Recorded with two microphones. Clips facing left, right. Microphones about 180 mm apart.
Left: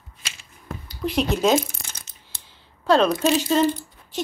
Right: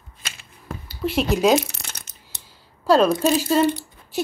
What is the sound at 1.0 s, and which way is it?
Speech, 5° right (ahead or behind).